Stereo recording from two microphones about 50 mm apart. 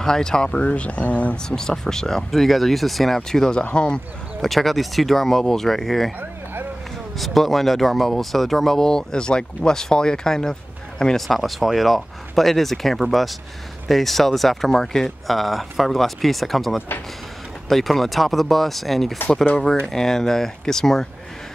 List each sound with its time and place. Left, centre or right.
0.0 s speech: centre
1.5 s speech: centre
4.4 s speech: centre
7.2 s speech: centre
11.2 s speech: centre